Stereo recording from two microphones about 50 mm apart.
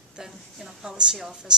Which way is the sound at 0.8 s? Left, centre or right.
Centre.